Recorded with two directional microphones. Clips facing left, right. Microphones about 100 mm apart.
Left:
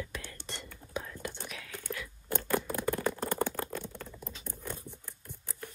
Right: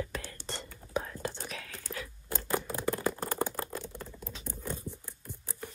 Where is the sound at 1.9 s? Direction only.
5° left (ahead or behind).